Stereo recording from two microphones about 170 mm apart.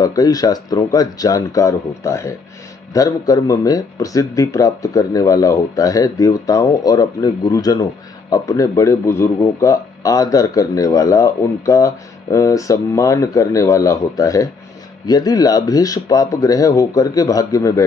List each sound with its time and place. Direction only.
0.0 s speech: 20° left (ahead or behind)